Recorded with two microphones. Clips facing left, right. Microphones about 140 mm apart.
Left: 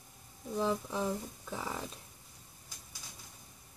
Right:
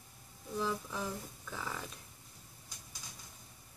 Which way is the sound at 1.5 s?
25° left (ahead or behind).